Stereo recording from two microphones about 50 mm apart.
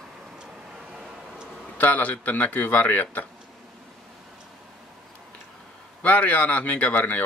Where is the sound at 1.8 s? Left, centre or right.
Left.